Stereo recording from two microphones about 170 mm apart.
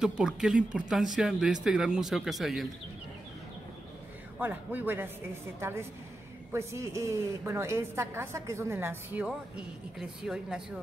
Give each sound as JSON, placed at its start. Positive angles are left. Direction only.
{"t": 0.0, "sound": "speech", "side_deg": -5}
{"t": 4.4, "sound": "a woman's voice", "side_deg": -10}